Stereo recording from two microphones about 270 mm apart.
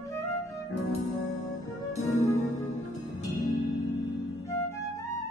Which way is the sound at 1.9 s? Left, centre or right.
Left.